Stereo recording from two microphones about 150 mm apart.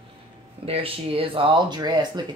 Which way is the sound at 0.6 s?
40° right (ahead or behind).